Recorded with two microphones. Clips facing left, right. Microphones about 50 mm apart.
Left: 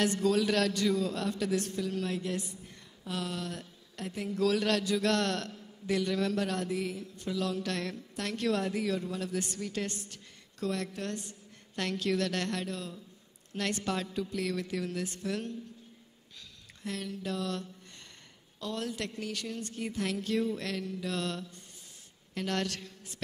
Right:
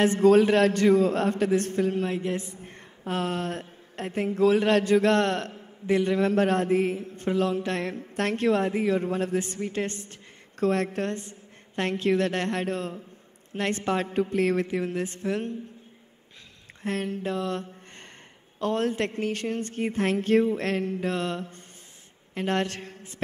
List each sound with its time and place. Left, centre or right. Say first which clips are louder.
0.0 s a man's voice: right 9 dB; right
11.1 s a woman's voice: right 6 dB; right
16.8 s a man's voice: right 8 dB; right